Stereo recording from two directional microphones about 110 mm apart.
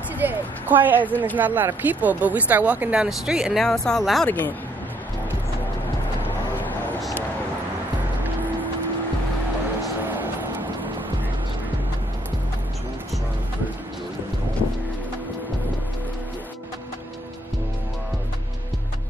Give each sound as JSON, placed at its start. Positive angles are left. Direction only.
{"t": 0.2, "sound": "a woman's voice", "side_deg": -15}
{"t": 1.0, "sound": "speech", "side_deg": 15}
{"t": 1.3, "sound": "speech", "side_deg": -15}
{"t": 10.0, "sound": "vehicle", "side_deg": -15}